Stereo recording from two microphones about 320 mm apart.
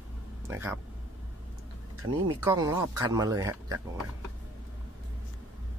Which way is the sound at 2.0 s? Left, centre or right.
Centre.